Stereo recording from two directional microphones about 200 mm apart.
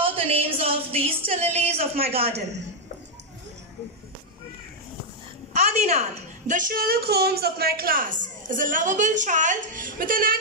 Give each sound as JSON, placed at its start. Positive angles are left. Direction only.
{"t": 0.0, "sound": "a woman's voice", "side_deg": -30}
{"t": 5.5, "sound": "a woman's voice", "side_deg": -35}